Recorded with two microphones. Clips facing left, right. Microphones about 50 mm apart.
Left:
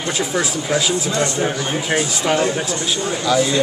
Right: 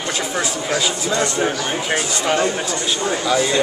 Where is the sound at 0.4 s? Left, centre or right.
Centre.